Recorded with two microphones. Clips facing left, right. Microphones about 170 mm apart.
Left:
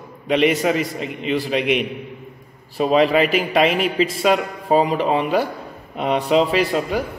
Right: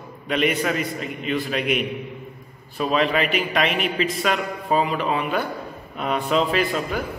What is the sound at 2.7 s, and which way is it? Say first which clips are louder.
A man's voice: left 5 dB; 30° left (ahead or behind).